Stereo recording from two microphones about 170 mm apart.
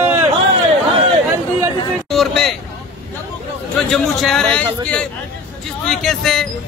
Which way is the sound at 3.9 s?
Centre (ahead or behind).